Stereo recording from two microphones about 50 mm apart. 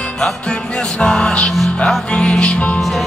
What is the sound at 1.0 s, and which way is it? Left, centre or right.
Music, centre.